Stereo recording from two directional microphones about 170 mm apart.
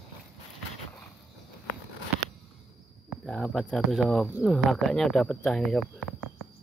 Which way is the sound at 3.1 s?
Centre (ahead or behind).